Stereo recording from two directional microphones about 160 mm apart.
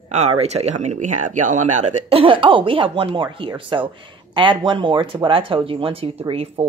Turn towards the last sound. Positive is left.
turn(degrees=-40)  # may be behind; listen again after turning